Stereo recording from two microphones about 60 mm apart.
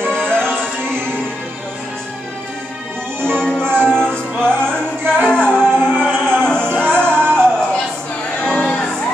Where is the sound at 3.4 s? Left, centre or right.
Centre.